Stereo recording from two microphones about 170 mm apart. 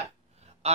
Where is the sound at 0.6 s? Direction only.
40° right (ahead or behind).